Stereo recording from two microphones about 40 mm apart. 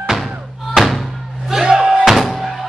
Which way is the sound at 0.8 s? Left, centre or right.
Centre.